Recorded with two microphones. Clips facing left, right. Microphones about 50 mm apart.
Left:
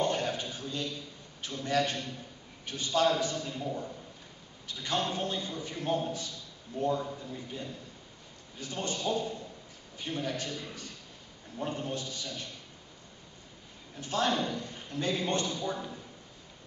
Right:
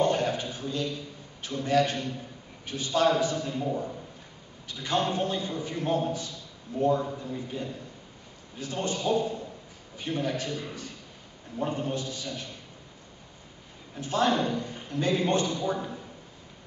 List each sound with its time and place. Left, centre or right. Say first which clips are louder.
0.0 s a sound: right 5 dB; centre
1.5 s a man's voice: right 5 dB; centre
13.9 s a man's voice: right 4 dB; centre